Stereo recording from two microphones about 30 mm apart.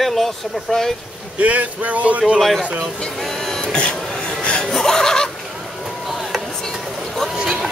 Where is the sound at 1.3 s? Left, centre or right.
Right.